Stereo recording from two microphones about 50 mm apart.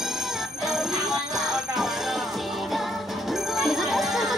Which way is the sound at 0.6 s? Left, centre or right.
Centre.